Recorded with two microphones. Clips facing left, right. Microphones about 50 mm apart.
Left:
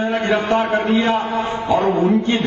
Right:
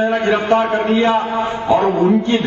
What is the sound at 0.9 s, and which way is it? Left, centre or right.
Speech, right.